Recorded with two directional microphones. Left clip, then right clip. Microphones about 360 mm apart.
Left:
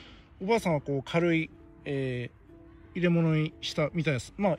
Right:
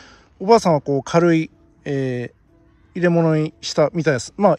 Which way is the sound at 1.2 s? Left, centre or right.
Right.